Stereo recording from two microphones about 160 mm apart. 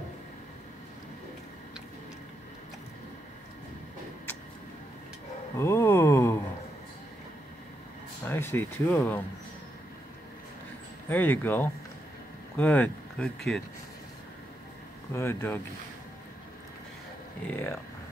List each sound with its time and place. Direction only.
5.6 s a sound: 15° left (ahead or behind)
8.3 s speech: 15° left (ahead or behind)
11.1 s speech: 10° left (ahead or behind)
15.1 s speech: 15° left (ahead or behind)
17.5 s speech: 15° left (ahead or behind)